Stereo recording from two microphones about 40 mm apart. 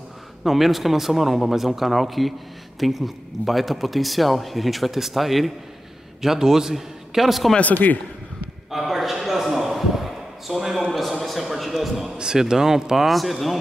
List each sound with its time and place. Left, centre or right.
0.4 s speech: centre
6.2 s a man's voice: centre
7.7 s a man's voice: left
8.7 s a sound: centre
12.2 s a man's voice: centre